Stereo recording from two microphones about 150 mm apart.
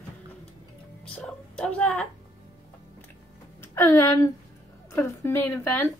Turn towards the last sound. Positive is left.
turn(degrees=15)  # may be behind; listen again after turning